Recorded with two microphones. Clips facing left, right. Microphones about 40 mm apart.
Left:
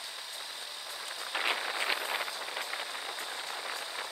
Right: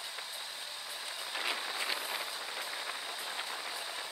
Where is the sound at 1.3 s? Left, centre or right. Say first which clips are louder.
Left 5 dB; left.